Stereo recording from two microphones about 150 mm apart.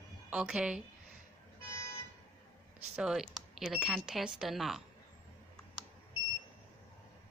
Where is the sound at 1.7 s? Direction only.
20° left (ahead or behind).